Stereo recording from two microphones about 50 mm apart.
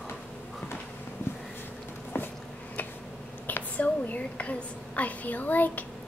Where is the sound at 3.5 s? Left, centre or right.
Left.